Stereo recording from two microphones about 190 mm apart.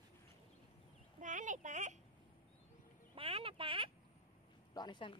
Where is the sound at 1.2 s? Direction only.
40° right (ahead or behind).